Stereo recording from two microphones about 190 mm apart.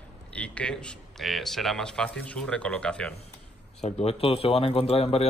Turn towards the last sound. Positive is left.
turn(degrees=30)  # may be behind; listen again after turning